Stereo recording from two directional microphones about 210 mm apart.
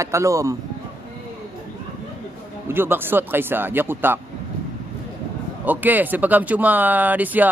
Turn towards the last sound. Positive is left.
turn(degrees=-10)  # may be behind; listen again after turning